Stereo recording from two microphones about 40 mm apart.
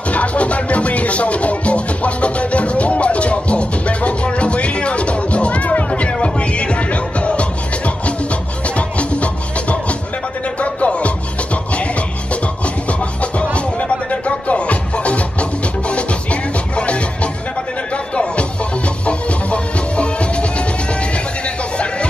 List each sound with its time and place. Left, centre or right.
0.1 s music: left